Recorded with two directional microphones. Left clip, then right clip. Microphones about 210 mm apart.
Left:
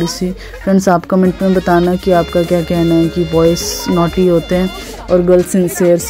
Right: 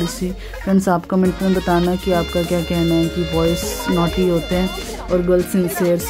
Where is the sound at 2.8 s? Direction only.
60° left (ahead or behind).